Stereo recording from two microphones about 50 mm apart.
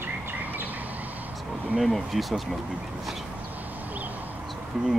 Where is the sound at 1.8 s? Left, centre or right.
Centre.